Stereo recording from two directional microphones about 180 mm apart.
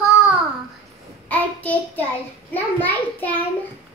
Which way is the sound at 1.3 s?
10° left (ahead or behind).